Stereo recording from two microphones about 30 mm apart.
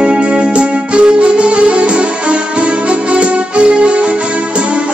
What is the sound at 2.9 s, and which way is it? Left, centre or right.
Music, right.